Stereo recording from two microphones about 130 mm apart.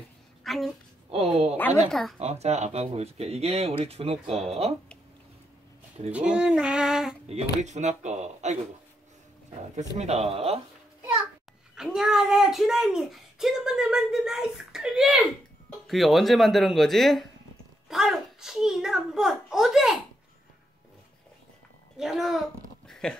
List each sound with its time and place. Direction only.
0.4 s a sound: centre (ahead or behind)
1.1 s a sound: 50° right (ahead or behind)
1.9 s speech: centre (ahead or behind)
2.1 s speech: 55° right (ahead or behind)
6.1 s speech: 5° right (ahead or behind)
7.2 s speech: 60° right (ahead or behind)
9.8 s speech: 55° right (ahead or behind)
11.7 s speech: 5° right (ahead or behind)
21.9 s speech: 5° right (ahead or behind)
22.8 s a sound: 5° left (ahead or behind)